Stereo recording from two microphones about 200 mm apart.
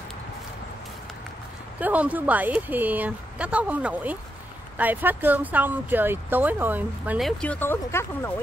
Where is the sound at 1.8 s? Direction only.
10° right (ahead or behind).